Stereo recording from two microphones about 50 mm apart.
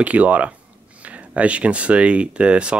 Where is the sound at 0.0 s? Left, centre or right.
Right.